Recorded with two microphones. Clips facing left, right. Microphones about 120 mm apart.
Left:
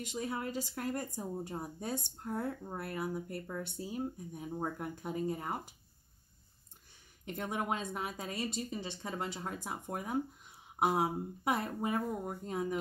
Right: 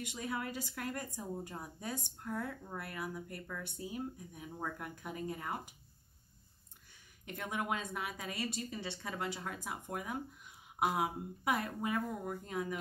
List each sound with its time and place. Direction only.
0.1 s a woman's voice: 25° left (ahead or behind)
7.2 s a woman's voice: 25° left (ahead or behind)